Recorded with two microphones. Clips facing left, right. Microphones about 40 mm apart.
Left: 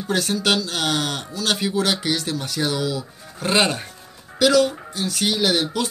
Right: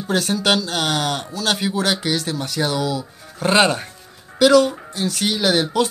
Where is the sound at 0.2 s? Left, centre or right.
Centre.